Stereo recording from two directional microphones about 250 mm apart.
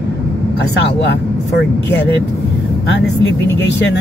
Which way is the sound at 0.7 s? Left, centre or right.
Left.